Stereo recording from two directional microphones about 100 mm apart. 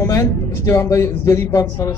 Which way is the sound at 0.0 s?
35° left (ahead or behind).